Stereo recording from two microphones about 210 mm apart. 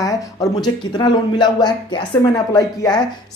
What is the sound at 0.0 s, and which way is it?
Speech, 15° left (ahead or behind).